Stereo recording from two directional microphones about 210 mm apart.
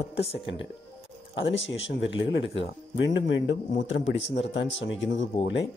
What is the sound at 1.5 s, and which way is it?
Speech, 60° left (ahead or behind).